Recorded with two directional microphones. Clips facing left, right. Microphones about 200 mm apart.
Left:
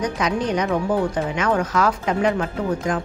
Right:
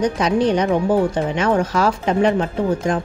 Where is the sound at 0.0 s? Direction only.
30° right (ahead or behind).